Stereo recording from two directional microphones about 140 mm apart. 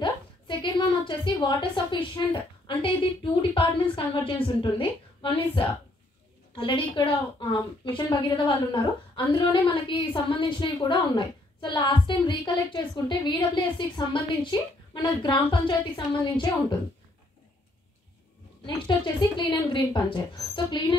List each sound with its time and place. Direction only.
0.0 s a sound: 35° left (ahead or behind)
3.5 s a woman's voice: 40° left (ahead or behind)
18.7 s a woman's voice: 35° left (ahead or behind)